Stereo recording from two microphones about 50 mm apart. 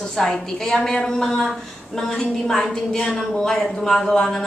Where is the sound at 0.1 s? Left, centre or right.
Centre.